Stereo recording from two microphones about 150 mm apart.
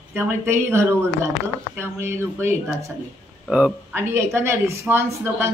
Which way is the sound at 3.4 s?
5° right (ahead or behind).